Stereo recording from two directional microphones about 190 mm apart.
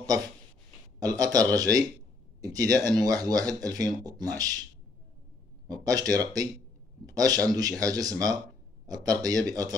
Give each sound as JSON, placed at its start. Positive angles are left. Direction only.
{"t": 0.9, "sound": "speech", "side_deg": -20}
{"t": 5.7, "sound": "speech", "side_deg": -20}